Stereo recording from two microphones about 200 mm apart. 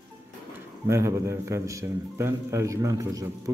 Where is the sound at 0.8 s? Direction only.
15° right (ahead or behind).